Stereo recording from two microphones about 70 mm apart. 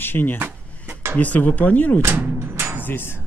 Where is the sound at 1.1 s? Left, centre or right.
Left.